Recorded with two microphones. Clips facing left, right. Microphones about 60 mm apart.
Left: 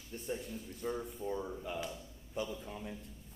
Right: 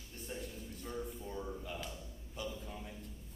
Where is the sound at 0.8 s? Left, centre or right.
Left.